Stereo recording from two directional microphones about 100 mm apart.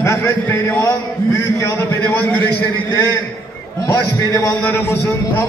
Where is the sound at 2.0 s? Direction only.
20° left (ahead or behind).